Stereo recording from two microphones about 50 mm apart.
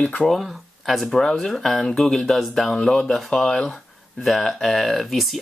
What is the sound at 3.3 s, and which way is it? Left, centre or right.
Speech, centre.